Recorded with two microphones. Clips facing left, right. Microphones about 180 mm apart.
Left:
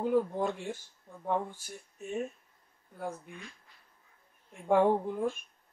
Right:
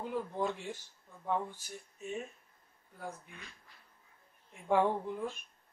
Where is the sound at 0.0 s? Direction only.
50° left (ahead or behind).